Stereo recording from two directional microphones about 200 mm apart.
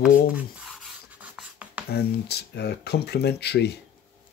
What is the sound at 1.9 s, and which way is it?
Speech, 55° left (ahead or behind).